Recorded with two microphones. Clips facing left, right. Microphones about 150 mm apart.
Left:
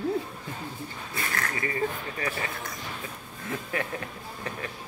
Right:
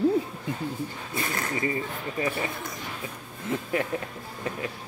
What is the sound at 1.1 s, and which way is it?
Speech, 20° right (ahead or behind).